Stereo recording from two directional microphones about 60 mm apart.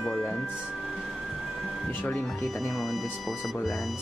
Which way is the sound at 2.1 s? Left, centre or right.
Centre.